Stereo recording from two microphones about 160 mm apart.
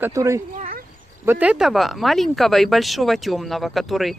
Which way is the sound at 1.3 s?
10° right (ahead or behind).